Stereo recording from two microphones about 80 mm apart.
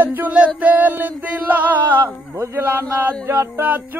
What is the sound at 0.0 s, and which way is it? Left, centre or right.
Music, right.